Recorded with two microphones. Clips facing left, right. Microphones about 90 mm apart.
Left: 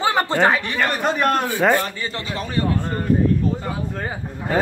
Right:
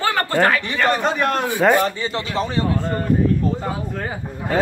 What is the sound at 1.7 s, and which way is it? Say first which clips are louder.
Speech: right 4 dB; 20° right (ahead or behind).